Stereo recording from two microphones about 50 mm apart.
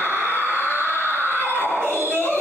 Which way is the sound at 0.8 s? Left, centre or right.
Right.